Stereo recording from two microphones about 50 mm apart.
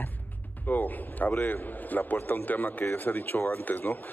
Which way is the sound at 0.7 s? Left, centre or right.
Left.